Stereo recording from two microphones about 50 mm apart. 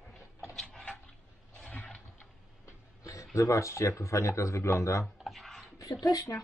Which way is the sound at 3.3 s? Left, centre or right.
Left.